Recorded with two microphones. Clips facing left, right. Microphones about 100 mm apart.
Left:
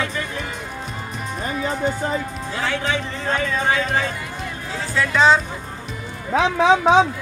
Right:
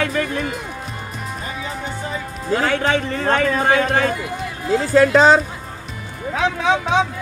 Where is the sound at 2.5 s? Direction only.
50° right (ahead or behind).